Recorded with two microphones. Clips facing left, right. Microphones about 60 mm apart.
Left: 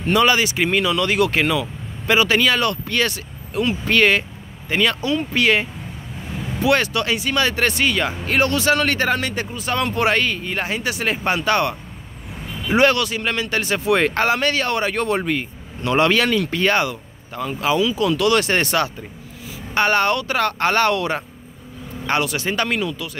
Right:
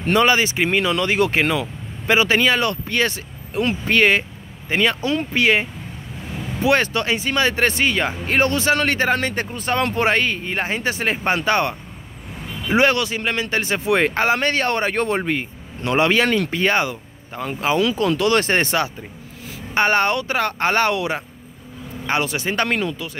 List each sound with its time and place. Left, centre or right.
0.1 s speech: right
9.2 s speech: right
9.9 s speech: right
14.3 s speech: right
17.7 s speech: right
18.1 s speech: right; by 21.2 s centre
22.2 s speech: right
22.6 s speech: right